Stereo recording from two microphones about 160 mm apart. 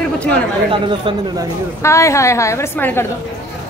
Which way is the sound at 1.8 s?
20° left (ahead or behind).